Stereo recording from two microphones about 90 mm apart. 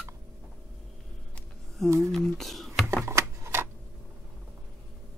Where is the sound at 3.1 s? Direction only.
30° right (ahead or behind).